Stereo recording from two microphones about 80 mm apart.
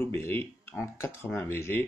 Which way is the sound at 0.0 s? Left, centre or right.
Left.